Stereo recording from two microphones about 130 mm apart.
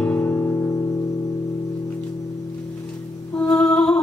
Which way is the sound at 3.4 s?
5° left (ahead or behind).